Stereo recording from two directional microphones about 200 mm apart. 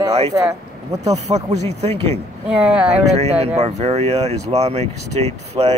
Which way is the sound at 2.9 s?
30° right (ahead or behind).